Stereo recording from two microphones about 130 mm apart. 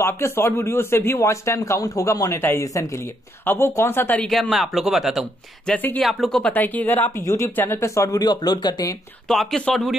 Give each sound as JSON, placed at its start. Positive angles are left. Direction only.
{"t": 0.0, "sound": "speech", "side_deg": 20}
{"t": 4.3, "sound": "speech", "side_deg": 0}
{"t": 5.7, "sound": "speech", "side_deg": 10}
{"t": 6.0, "sound": "speech", "side_deg": 0}
{"t": 9.3, "sound": "speech", "side_deg": 0}